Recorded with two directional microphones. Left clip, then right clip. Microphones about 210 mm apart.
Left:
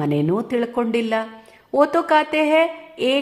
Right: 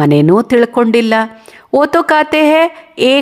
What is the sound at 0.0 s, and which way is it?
Speech, 45° right (ahead or behind).